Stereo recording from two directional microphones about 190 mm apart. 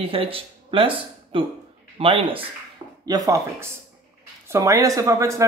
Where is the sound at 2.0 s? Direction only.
30° right (ahead or behind).